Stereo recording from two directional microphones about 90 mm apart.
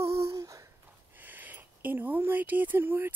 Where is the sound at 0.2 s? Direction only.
35° right (ahead or behind).